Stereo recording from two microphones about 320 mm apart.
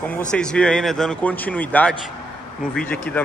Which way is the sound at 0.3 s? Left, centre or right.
Centre.